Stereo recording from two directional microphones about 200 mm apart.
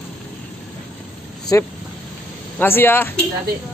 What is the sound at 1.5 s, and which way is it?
Speech, 15° left (ahead or behind).